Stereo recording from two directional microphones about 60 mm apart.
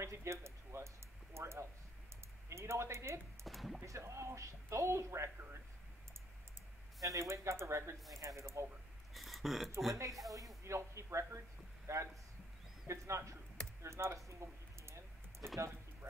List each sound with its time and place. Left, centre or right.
0.0 s a sound: right
1.3 s speech: right
3.4 s speech: centre
3.8 s speech: right
7.0 s speech: right
9.1 s a sound: centre
9.9 s speech: right
13.8 s typing: right